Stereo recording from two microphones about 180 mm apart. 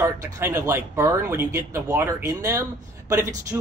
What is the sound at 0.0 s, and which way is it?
A man's voice, 15° right (ahead or behind).